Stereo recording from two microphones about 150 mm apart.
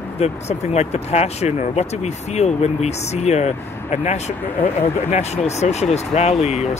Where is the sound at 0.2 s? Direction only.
45° left (ahead or behind).